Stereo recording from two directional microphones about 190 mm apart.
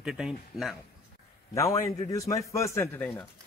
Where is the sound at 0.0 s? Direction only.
5° right (ahead or behind).